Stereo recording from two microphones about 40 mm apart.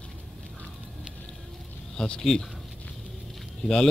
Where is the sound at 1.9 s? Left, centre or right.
Left.